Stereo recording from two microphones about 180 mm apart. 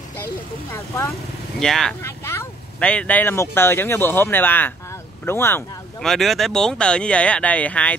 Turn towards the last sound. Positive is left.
turn(degrees=10)  # may be behind; listen again after turning